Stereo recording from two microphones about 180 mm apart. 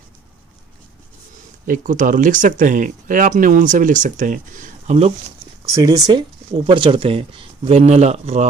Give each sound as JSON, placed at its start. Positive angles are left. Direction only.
{"t": 1.7, "sound": "speech", "side_deg": -45}
{"t": 5.7, "sound": "speech", "side_deg": -20}